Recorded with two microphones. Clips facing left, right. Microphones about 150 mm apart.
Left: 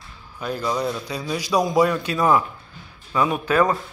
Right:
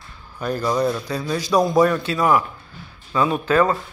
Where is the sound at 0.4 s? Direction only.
Centre (ahead or behind).